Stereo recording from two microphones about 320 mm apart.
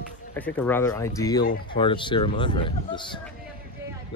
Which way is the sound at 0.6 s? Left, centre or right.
Centre.